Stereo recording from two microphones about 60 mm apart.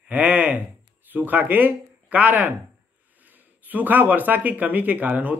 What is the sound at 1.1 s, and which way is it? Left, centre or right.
Speech, right.